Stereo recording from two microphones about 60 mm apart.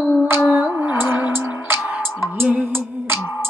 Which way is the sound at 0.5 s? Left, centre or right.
Right.